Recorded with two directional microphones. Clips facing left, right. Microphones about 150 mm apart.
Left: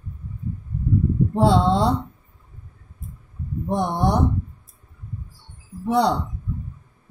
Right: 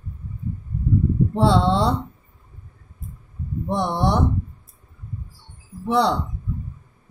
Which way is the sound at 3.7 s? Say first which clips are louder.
Even; 45° left (ahead or behind).